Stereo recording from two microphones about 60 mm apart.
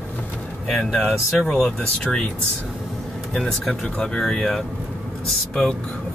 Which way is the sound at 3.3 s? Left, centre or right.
Centre.